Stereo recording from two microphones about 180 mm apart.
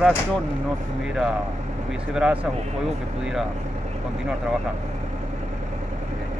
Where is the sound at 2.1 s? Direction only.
5° right (ahead or behind).